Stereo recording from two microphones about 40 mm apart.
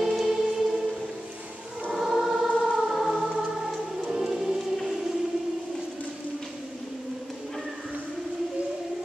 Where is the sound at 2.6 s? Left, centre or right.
Centre.